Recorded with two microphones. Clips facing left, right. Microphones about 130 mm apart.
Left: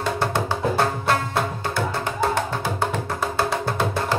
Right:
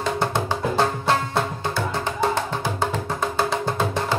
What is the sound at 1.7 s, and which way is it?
Music, 10° left (ahead or behind).